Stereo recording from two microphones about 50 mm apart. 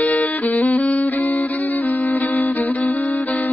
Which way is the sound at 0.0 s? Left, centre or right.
Left.